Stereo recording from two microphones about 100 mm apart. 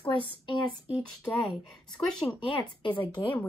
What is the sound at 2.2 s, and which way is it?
Speech, 10° right (ahead or behind).